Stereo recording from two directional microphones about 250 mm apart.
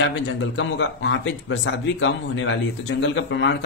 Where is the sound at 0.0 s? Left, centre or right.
Left.